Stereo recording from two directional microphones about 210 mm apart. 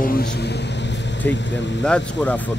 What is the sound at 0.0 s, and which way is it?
Vehicle, 45° left (ahead or behind).